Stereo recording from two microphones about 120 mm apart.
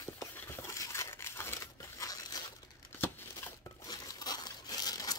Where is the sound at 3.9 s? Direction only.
35° left (ahead or behind).